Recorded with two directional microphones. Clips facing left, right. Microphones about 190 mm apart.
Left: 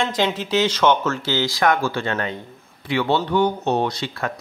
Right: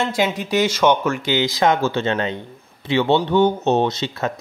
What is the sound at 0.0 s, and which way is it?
Speech, 10° right (ahead or behind).